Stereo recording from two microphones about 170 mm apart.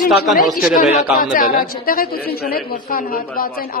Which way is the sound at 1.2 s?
60° left (ahead or behind).